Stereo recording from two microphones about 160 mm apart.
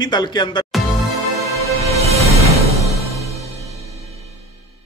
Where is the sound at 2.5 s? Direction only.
20° left (ahead or behind).